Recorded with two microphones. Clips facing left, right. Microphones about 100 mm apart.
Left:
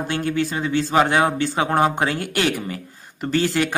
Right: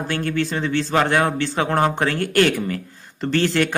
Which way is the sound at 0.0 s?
15° left (ahead or behind).